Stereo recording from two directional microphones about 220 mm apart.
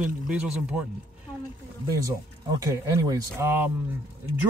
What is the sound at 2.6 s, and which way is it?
Speech, 15° right (ahead or behind).